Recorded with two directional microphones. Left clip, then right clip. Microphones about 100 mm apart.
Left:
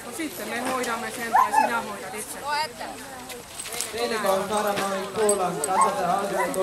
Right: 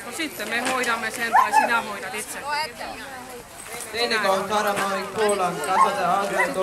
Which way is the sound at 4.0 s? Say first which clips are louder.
Right 3 dB; 15° right (ahead or behind).